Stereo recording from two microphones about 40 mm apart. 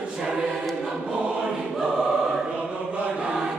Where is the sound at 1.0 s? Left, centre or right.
Right.